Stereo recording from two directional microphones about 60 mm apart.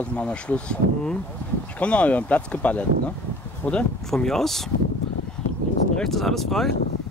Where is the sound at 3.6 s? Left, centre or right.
Left.